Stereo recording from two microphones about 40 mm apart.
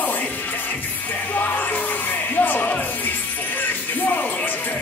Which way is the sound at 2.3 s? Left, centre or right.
Left.